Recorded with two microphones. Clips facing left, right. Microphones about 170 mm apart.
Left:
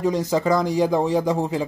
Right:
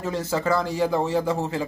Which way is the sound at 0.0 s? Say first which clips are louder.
Left 5 dB; 15° left (ahead or behind).